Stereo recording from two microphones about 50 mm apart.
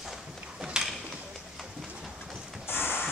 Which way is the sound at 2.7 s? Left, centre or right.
Left.